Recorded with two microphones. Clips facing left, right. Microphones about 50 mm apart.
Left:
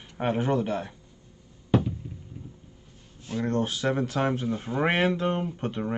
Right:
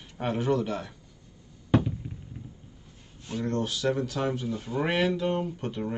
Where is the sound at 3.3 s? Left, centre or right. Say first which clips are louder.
Left 2 dB; left.